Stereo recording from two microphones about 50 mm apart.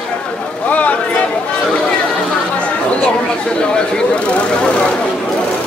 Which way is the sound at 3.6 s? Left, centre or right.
Centre.